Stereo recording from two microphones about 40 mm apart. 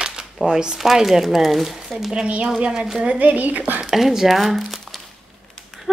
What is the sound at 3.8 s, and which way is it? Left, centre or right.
Speech, centre.